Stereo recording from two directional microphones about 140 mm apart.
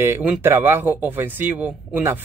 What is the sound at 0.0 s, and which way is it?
Speech, 15° right (ahead or behind).